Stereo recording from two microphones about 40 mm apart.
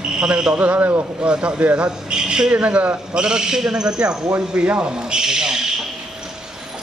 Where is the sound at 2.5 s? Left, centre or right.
Right.